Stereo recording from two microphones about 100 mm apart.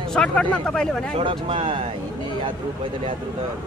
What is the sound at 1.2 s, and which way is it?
Speech, 60° right (ahead or behind).